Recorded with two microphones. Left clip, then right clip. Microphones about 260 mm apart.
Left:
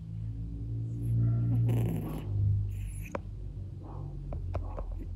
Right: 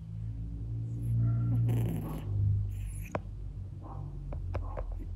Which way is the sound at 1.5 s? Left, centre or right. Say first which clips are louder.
Left 2 dB; centre.